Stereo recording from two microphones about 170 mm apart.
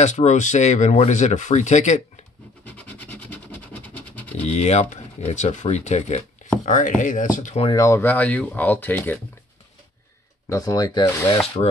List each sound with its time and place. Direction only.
0.0 s speech: 45° left (ahead or behind)
2.7 s a sound: 10° left (ahead or behind)
4.4 s speech: 40° left (ahead or behind)
7.6 s speech: 20° left (ahead or behind)
10.5 s speech: 20° left (ahead or behind)